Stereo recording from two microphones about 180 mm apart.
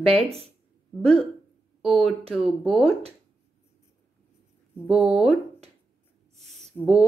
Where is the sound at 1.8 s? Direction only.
Centre (ahead or behind).